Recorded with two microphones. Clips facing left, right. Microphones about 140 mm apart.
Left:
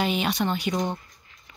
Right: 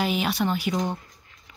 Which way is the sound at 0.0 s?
5° right (ahead or behind).